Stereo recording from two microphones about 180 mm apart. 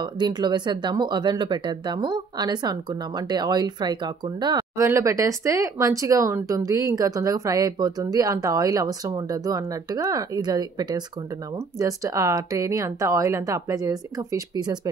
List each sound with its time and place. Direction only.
0.0 s speech: 25° right (ahead or behind)